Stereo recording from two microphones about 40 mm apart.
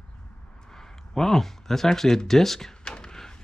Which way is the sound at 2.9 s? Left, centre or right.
Centre.